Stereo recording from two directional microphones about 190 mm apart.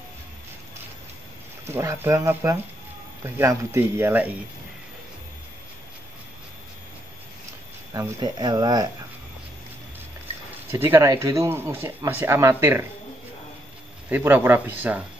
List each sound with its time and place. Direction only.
1.7 s speech: 15° right (ahead or behind)
7.9 s speech: 20° right (ahead or behind)
10.7 s speech: 15° right (ahead or behind)
14.0 s speech: 10° right (ahead or behind)